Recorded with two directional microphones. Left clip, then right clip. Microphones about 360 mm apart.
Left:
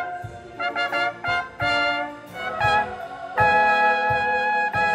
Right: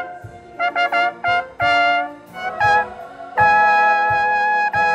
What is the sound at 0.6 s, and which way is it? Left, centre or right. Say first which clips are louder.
Music: right 6 dB; right.